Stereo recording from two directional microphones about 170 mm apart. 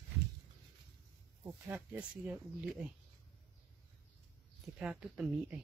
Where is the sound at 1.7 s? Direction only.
10° right (ahead or behind).